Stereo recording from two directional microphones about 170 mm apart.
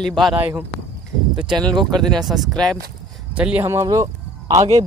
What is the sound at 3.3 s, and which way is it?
Speech, 10° right (ahead or behind).